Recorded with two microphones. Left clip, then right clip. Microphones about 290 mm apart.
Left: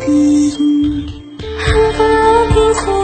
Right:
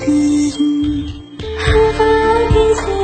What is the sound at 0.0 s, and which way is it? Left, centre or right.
Music, left.